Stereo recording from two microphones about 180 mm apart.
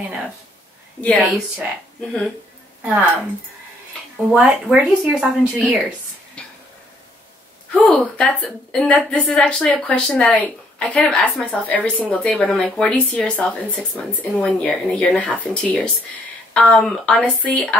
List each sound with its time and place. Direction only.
2.8 s speech: 10° right (ahead or behind)
4.3 s a woman's voice: 5° right (ahead or behind)
6.4 s a sound: 5° left (ahead or behind)
7.7 s a woman's voice: 5° left (ahead or behind)